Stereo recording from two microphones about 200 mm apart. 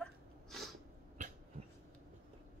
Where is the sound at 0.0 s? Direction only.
Centre (ahead or behind).